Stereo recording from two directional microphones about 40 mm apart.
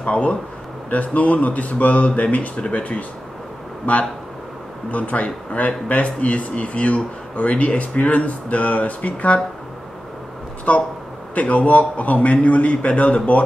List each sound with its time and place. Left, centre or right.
0.0 s a man's voice: left
10.7 s a man's voice: left